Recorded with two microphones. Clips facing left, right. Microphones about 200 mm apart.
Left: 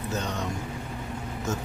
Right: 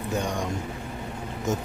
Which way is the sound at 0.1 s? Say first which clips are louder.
Right 4 dB; 10° right (ahead or behind).